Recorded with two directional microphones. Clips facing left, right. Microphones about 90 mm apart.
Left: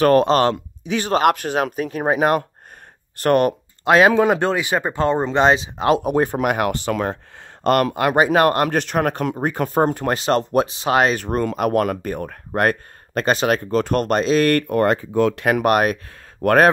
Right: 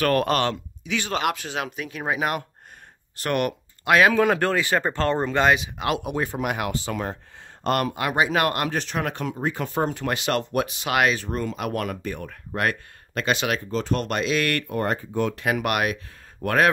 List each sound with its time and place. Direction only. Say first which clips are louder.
0.0 s speech: left 7 dB; 30° left (ahead or behind)
6.3 s speech: left 7 dB; 55° left (ahead or behind); by 7.2 s 80° left
7.6 s speech: left 7 dB; 60° left (ahead or behind)
8.2 s speech: left 6 dB; 40° left (ahead or behind)
8.6 s speech: left 7 dB; 55° left (ahead or behind); by 11.1 s 35° left (ahead or behind)
11.1 s speech: left 7 dB; 55° left (ahead or behind); by 13.6 s 40° left (ahead or behind)
13.7 s speech: left 7 dB; 55° left (ahead or behind); by 14.6 s 35° left (ahead or behind)
14.7 s speech: left 8 dB; 80° left
15.6 s speech: left 9 dB; 40° left (ahead or behind)
16.4 s speech: left 9 dB; 65° left (ahead or behind)